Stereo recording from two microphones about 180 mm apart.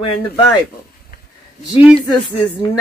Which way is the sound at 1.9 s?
25° left (ahead or behind).